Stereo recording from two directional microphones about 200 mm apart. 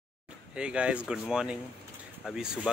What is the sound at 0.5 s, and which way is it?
Speech, 5° right (ahead or behind).